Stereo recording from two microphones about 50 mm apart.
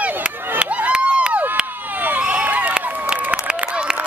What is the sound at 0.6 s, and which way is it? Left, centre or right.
Crowd, right.